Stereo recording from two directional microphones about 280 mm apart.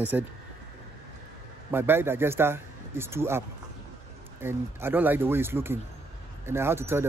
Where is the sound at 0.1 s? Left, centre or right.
Centre.